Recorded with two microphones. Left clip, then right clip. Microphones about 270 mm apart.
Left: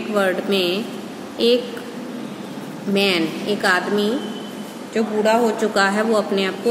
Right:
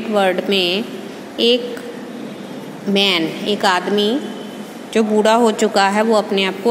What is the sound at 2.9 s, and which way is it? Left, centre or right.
Speech, right.